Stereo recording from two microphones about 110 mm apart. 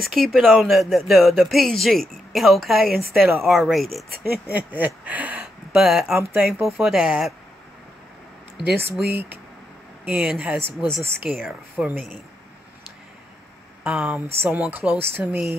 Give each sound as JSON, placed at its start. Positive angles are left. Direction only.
{"t": 0.0, "sound": "speech", "side_deg": 0}
{"t": 4.5, "sound": "speech", "side_deg": -15}
{"t": 9.1, "sound": "speech", "side_deg": -15}
{"t": 13.8, "sound": "speech", "side_deg": -10}